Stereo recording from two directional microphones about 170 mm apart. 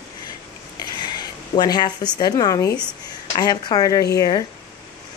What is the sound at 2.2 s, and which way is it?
Speech, 20° left (ahead or behind).